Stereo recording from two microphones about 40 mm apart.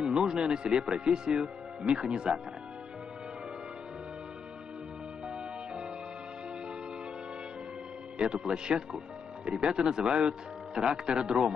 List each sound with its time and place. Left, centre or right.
0.0 s speech: right
8.2 s speech: right